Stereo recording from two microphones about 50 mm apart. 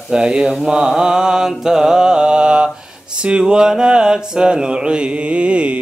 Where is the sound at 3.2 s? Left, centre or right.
Centre.